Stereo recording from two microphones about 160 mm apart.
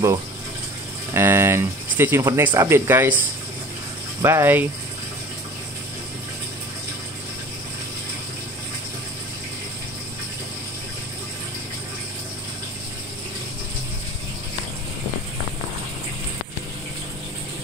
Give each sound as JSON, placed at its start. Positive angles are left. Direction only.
{"t": 1.1, "sound": "speech", "side_deg": -15}
{"t": 4.2, "sound": "speech", "side_deg": -15}